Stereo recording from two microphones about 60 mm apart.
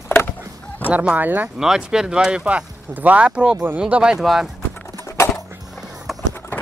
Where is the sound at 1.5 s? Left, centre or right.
Centre.